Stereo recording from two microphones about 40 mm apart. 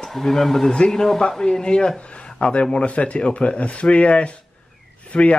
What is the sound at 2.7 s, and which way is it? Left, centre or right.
Speech, left.